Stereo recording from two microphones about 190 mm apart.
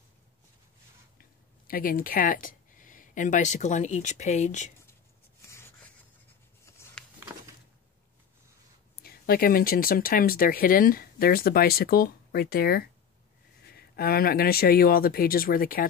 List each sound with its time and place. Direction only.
1.7 s speech: 50° left (ahead or behind)
5.4 s rub: 15° left (ahead or behind)
6.6 s a sound: 15° left (ahead or behind)
9.0 s speech: 50° left (ahead or behind)